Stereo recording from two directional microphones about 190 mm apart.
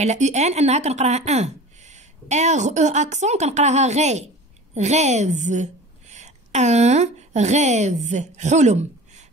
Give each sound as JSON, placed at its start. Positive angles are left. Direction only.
{"t": 0.0, "sound": "a woman's voice", "side_deg": -35}